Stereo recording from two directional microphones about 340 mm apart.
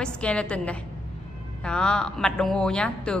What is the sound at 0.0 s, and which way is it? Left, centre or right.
A woman's voice, centre.